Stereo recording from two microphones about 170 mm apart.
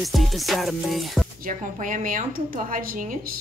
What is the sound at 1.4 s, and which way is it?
Speech, 50° right (ahead or behind).